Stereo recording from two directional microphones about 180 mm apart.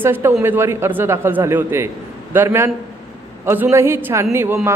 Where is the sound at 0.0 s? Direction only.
10° right (ahead or behind).